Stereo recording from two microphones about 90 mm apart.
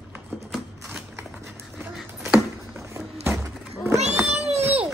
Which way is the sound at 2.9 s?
25° right (ahead or behind).